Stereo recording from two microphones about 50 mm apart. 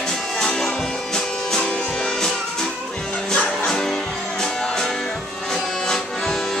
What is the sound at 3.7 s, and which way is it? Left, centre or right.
Music, centre.